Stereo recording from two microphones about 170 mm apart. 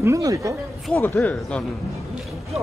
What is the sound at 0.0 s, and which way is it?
Speech, 20° right (ahead or behind).